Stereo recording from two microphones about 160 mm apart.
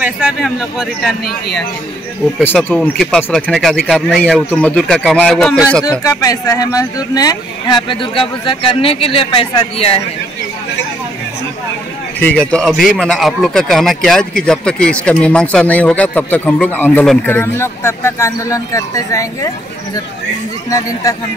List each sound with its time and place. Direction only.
0.0 s a man's voice: 5° right (ahead or behind)
2.4 s a man's voice: 10° left (ahead or behind)
5.9 s speech: 20° left (ahead or behind)
12.2 s speech: 10° left (ahead or behind)
20.7 s speech: 20° left (ahead or behind)